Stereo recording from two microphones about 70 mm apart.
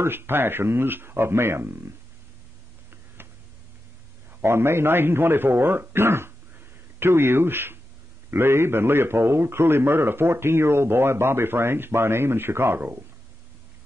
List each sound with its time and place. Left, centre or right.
0.0 s a man's voice: right
3.2 s a sound: right
4.4 s a man's voice: right